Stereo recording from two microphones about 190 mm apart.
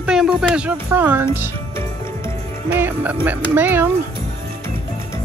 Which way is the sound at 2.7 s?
10° right (ahead or behind).